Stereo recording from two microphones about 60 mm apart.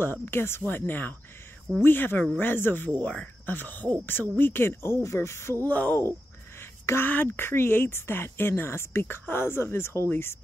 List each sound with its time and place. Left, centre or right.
0.0 s speech: left
5.7 s speech: left
6.6 s a sound: left
7.1 s speech: left